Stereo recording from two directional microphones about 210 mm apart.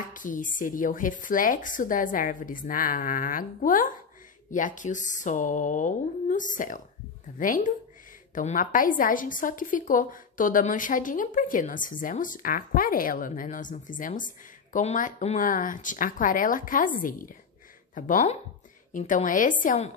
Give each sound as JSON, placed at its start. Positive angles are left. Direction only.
{"t": 0.1, "sound": "a woman's voice", "side_deg": 40}